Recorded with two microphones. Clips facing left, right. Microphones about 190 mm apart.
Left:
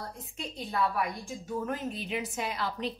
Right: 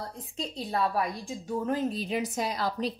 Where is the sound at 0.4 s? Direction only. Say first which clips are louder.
Right 2 dB; 35° right (ahead or behind).